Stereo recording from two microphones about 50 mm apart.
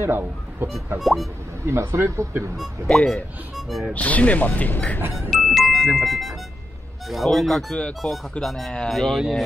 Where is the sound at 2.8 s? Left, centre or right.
Centre.